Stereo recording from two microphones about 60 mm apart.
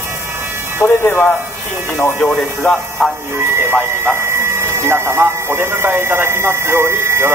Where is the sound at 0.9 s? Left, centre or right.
Left.